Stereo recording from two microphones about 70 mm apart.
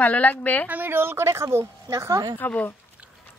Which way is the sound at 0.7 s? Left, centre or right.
Right.